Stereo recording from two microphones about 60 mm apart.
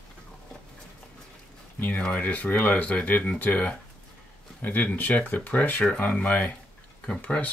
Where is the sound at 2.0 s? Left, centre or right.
Left.